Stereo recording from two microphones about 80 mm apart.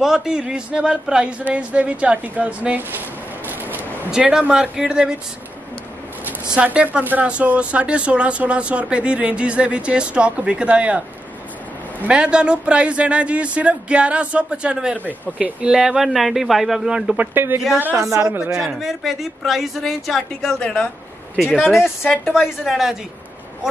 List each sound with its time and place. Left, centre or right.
0.0 s speech: centre
3.4 s a sound: right
4.1 s speech: centre
6.5 s speech: centre
12.0 s speech: centre
17.2 s speech: right
18.1 s speech: right
18.8 s speech: centre
21.4 s speech: centre